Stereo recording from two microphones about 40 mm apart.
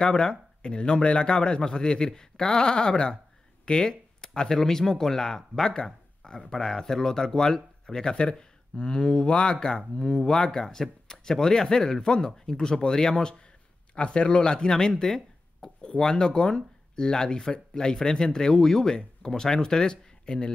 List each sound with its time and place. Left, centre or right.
0.0 s speech: left